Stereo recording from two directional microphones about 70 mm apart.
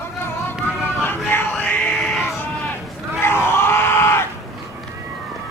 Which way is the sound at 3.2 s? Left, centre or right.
Left.